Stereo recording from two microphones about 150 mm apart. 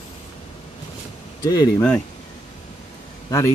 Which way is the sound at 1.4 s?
25° left (ahead or behind).